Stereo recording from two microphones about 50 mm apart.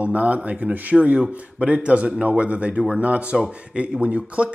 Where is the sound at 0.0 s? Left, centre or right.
Right.